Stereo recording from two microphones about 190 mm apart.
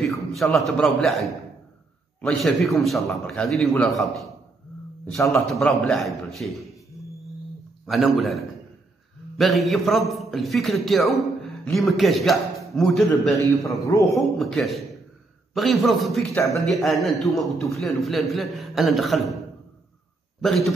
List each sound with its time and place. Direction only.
0.3 s a man's voice: centre (ahead or behind)
2.2 s a man's voice: centre (ahead or behind)
7.8 s a man's voice: centre (ahead or behind)
13.7 s a man's voice: 20° left (ahead or behind)
14.1 s a man's voice: centre (ahead or behind)
20.3 s a man's voice: centre (ahead or behind)